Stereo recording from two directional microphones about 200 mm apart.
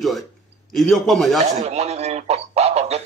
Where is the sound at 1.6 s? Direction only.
30° right (ahead or behind).